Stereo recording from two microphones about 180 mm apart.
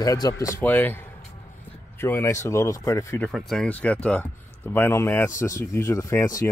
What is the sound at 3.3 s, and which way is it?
Speech, centre (ahead or behind).